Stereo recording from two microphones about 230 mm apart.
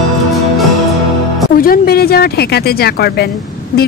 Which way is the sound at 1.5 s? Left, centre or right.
Left.